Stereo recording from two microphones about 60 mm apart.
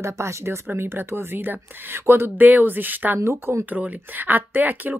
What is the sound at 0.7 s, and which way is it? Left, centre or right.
Speech, right.